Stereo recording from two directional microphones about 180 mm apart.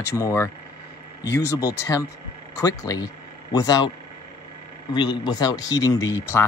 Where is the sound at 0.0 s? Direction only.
15° left (ahead or behind).